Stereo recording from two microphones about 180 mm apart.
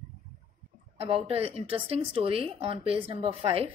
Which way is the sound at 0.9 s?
30° right (ahead or behind).